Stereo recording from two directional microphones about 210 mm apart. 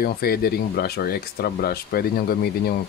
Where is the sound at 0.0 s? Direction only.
45° left (ahead or behind).